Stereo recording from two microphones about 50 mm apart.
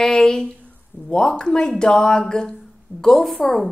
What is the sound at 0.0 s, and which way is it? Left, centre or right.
Speech, centre.